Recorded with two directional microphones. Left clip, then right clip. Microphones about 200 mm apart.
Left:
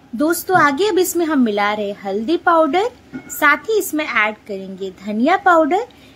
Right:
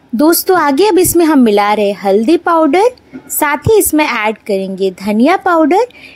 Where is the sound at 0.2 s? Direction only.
40° right (ahead or behind).